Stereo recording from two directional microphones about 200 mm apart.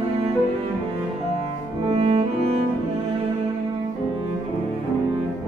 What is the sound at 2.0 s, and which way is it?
Cello, 30° right (ahead or behind).